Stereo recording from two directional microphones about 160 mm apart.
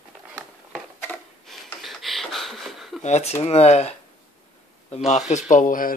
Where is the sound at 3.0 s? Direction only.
40° left (ahead or behind).